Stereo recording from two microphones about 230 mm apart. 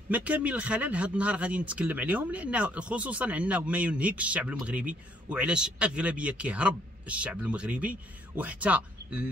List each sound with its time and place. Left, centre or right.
0.1 s speech: centre